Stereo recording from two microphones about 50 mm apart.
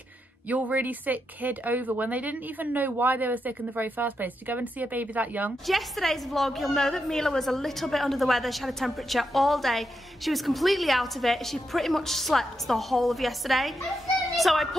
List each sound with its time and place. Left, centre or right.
0.5 s speech: right
5.7 s a woman's voice: centre